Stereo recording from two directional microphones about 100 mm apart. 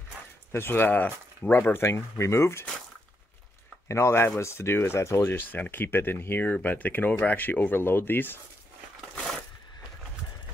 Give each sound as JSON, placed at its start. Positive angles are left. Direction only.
{"t": 0.5, "sound": "speech", "side_deg": 20}
{"t": 3.9, "sound": "speech", "side_deg": 25}
{"t": 9.1, "sound": "a sound", "side_deg": 5}